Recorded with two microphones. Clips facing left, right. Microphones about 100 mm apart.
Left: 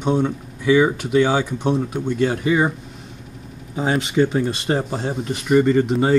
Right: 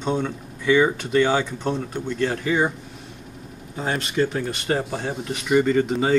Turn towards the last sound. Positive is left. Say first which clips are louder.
# left 3 dB
turn(degrees=0)  # may be behind; listen again after turning